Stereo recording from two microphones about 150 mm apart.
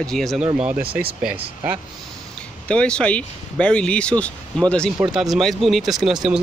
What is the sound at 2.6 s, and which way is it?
Speech, 5° left (ahead or behind).